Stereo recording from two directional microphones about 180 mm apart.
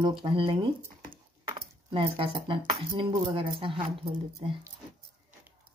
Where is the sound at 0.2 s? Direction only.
25° right (ahead or behind).